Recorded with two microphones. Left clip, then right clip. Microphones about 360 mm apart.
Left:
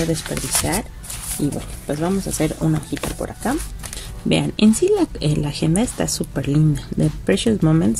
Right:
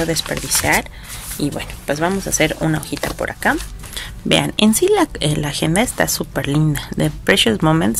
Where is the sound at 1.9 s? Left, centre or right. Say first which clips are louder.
Right 4 dB; right.